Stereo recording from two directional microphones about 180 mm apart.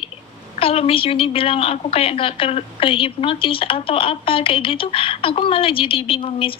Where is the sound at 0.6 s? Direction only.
30° left (ahead or behind).